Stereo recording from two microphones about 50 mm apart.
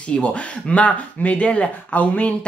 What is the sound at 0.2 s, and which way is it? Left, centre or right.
Speech, left.